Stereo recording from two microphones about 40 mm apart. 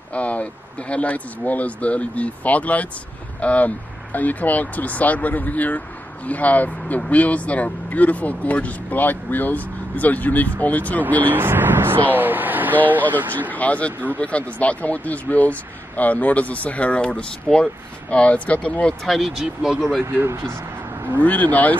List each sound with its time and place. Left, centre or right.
0.1 s speech: left
11.2 s speech: right
13.5 s speech: left
19.0 s speech: centre
19.4 s speech: centre
21.2 s speech: left